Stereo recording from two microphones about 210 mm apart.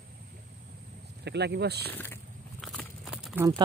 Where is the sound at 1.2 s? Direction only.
55° right (ahead or behind).